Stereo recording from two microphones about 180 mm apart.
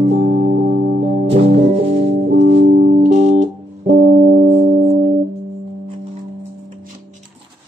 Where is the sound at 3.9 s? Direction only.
50° right (ahead or behind).